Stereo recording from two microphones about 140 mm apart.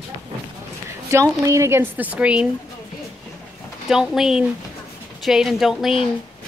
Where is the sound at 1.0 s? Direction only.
20° right (ahead or behind).